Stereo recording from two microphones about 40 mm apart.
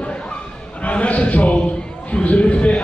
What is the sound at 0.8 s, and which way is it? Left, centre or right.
A man's voice, left.